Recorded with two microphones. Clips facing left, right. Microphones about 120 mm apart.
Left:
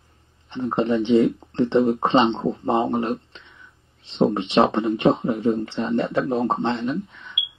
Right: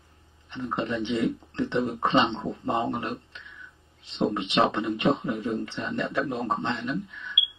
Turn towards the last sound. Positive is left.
turn(degrees=30)  # may be behind; listen again after turning